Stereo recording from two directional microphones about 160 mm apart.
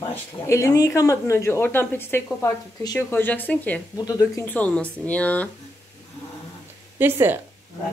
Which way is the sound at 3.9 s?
25° left (ahead or behind).